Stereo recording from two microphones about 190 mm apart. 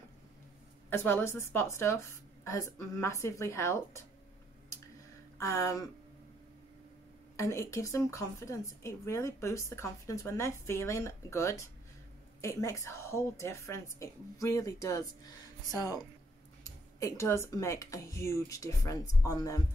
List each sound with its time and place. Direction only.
0.8 s a woman's voice: 10° left (ahead or behind)
5.4 s a woman's voice: 15° left (ahead or behind)
7.3 s a woman's voice: 15° left (ahead or behind)